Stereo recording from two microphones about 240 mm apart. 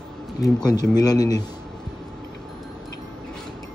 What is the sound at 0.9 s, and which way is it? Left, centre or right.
Speech, centre.